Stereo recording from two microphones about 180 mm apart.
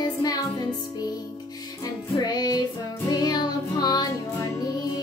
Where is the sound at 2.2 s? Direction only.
20° left (ahead or behind).